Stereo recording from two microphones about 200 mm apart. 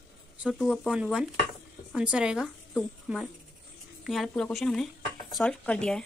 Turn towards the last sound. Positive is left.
turn(degrees=5)  # may be behind; listen again after turning